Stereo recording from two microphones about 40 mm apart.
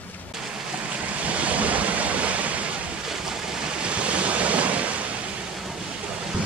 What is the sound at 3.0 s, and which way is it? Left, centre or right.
Waves, centre.